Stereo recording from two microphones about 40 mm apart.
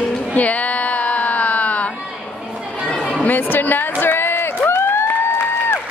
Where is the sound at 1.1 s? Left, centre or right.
Left.